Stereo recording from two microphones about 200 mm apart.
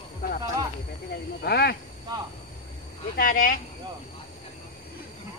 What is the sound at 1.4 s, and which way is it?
Speech, 55° left (ahead or behind).